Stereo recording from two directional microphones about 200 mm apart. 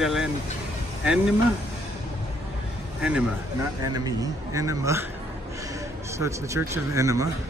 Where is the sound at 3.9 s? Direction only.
20° right (ahead or behind).